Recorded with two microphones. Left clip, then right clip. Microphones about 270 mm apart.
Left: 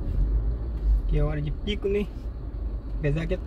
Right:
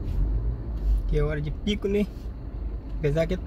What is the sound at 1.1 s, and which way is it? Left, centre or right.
Speech, right.